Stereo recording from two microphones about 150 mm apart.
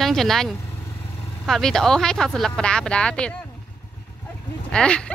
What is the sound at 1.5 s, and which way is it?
Speech, 5° left (ahead or behind).